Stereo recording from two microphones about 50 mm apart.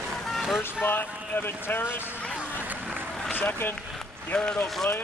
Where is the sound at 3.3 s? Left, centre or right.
Left.